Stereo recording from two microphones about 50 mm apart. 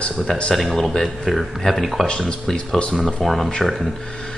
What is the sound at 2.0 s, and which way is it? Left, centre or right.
Speech, centre.